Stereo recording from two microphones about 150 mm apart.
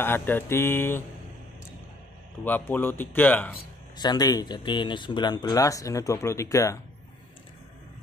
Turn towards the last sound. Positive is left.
turn(degrees=20)  # may be behind; listen again after turning